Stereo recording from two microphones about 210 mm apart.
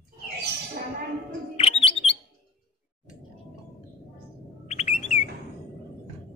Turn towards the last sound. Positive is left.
turn(degrees=30)  # may be behind; listen again after turning